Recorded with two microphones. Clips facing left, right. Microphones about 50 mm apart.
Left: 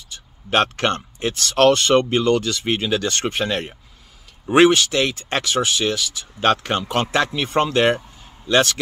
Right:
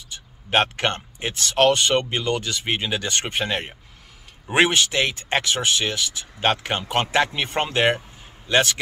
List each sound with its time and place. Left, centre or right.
0.5 s speech: centre
6.4 s speech: centre